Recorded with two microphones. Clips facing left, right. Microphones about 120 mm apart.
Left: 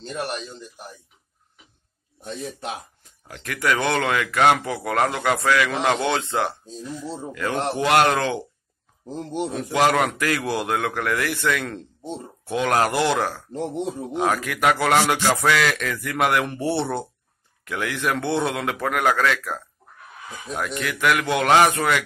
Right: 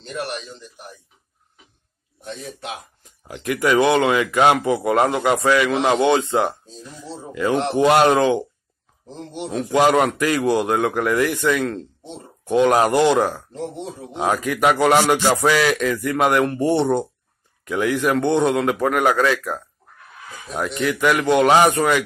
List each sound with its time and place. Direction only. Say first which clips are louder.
2.2 s speech: left 1 dB; 35° left (ahead or behind)
3.3 s a man's voice: right 5 dB; 10° right (ahead or behind)
7.5 s speech: right 3 dB; centre (ahead or behind)
9.5 s speech: right 4 dB; centre (ahead or behind)
10.4 s a man's voice: right 6 dB; centre (ahead or behind)